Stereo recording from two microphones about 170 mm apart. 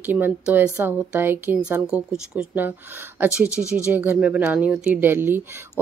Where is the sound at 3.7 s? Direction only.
10° right (ahead or behind).